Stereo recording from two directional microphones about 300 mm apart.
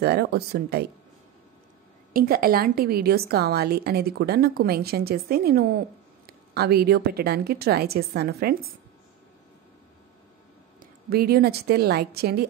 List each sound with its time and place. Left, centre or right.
0.0 s a woman's voice: right
2.1 s a woman's voice: right
10.8 s a woman's voice: right